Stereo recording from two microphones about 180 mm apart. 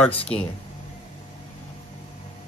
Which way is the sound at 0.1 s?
30° left (ahead or behind).